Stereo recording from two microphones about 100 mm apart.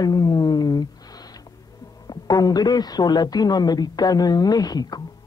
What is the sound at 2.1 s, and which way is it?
Speech, 40° left (ahead or behind).